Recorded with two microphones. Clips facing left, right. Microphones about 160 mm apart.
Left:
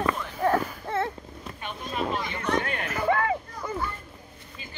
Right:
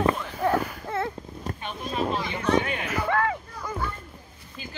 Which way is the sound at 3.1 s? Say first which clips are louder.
Left 1 dB; 20° left (ahead or behind).